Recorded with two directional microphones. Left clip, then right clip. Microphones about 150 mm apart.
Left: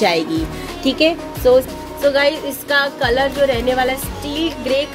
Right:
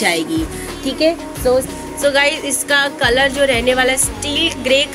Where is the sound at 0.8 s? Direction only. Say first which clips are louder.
Even; 70° left (ahead or behind).